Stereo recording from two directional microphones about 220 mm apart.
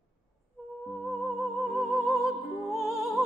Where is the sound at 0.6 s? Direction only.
Centre (ahead or behind).